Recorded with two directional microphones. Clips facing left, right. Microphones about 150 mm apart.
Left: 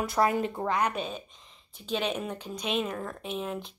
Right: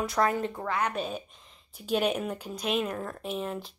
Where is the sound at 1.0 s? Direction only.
5° right (ahead or behind).